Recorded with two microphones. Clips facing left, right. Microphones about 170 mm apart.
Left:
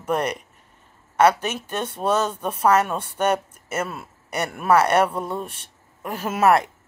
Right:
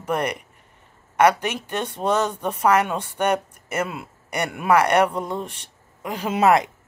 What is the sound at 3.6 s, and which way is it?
Speech, 15° right (ahead or behind).